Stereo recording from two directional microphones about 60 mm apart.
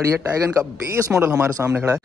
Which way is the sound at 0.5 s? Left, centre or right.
Right.